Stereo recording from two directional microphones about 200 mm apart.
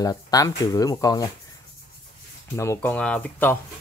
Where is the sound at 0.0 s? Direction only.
15° left (ahead or behind).